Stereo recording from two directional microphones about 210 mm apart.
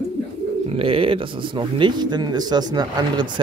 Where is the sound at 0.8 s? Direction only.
25° right (ahead or behind).